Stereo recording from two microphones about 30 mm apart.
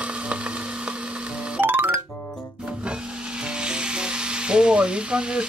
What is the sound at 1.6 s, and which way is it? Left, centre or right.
Music, right.